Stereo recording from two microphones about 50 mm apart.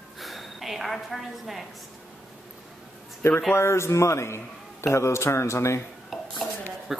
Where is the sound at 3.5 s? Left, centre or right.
Left.